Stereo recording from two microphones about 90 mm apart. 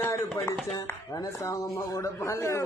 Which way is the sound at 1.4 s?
40° left (ahead or behind).